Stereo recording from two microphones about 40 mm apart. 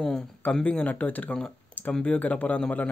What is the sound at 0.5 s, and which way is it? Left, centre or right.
A man's voice, left.